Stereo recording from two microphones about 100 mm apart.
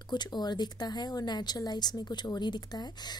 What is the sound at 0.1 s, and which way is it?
Speech, 45° left (ahead or behind).